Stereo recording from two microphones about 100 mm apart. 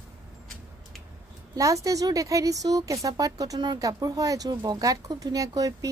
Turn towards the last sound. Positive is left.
turn(degrees=-35)  # may be behind; listen again after turning